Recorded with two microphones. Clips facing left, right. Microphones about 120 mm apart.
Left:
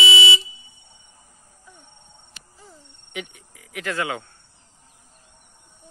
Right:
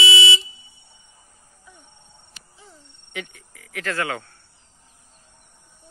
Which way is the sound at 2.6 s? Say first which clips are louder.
Left 1 dB; 15° left (ahead or behind).